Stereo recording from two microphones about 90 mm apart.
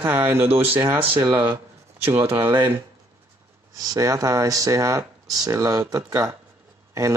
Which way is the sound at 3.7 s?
40° right (ahead or behind).